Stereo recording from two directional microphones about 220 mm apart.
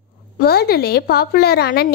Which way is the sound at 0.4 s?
45° left (ahead or behind).